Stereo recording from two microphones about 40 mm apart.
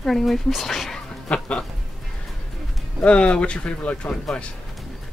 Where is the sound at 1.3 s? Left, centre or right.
Left.